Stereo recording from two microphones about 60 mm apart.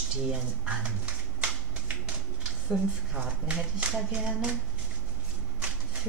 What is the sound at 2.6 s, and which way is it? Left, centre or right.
Speech, centre.